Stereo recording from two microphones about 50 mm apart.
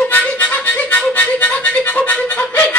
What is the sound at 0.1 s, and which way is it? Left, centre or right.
Music, left.